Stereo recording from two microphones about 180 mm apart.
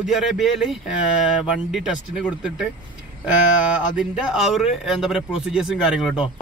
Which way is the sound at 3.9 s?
5° right (ahead or behind).